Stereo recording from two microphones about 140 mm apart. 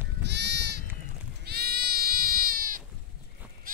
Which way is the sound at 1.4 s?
90° right.